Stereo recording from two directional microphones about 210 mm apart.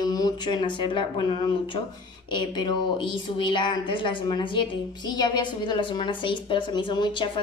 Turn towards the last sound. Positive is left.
turn(degrees=25)  # may be behind; listen again after turning